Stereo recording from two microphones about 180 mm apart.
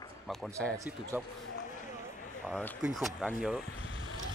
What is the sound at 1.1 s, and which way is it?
Speech, 10° right (ahead or behind).